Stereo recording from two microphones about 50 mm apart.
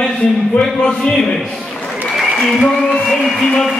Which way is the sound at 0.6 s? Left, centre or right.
Centre.